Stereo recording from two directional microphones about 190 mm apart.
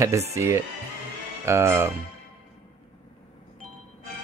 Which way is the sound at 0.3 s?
15° right (ahead or behind).